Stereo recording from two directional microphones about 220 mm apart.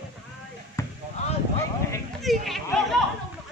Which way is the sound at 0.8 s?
10° left (ahead or behind).